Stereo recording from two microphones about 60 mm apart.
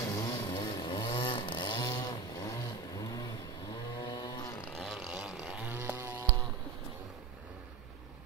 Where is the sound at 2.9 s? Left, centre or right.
Left.